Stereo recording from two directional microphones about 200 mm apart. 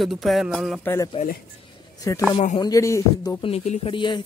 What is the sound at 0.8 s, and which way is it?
Speech, 10° left (ahead or behind).